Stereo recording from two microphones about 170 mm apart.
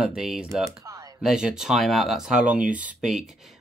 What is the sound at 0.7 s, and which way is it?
Speech, 20° right (ahead or behind).